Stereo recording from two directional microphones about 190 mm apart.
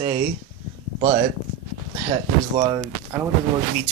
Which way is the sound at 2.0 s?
20° right (ahead or behind).